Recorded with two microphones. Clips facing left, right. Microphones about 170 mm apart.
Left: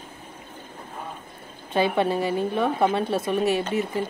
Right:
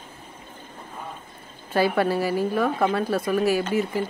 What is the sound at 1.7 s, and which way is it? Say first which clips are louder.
A woman's voice: right 1 dB; 20° left (ahead or behind).